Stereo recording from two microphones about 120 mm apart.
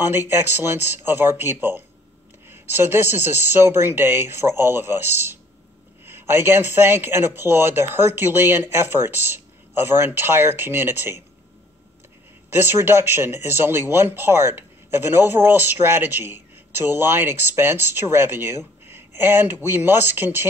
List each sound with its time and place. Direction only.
0.0 s speech: 20° right (ahead or behind)
12.5 s speech: 20° right (ahead or behind)